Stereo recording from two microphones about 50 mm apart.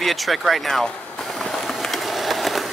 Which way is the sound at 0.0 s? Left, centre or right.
Centre.